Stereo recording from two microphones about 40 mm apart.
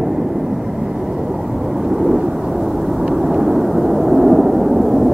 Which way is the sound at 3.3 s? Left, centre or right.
Centre.